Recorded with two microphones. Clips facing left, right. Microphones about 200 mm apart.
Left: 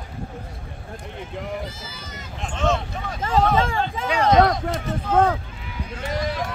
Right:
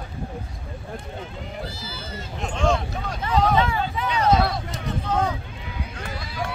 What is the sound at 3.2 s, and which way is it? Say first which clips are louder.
Vehicle: left 1 dB; 45° left (ahead or behind).